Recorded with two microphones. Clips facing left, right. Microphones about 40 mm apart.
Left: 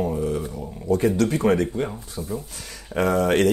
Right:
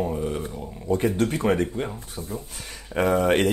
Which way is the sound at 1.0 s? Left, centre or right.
Right.